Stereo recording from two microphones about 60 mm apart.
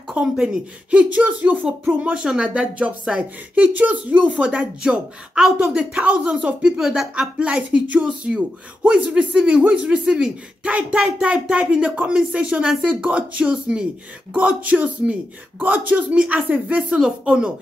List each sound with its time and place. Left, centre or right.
0.1 s speech: centre